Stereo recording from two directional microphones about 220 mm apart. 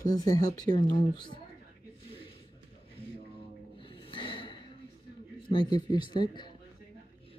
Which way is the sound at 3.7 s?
25° left (ahead or behind).